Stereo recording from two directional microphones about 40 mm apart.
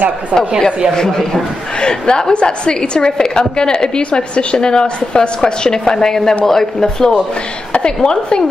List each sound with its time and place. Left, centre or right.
0.9 s a woman's voice: centre